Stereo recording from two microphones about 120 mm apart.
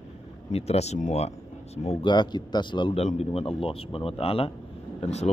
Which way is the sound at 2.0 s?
40° left (ahead or behind).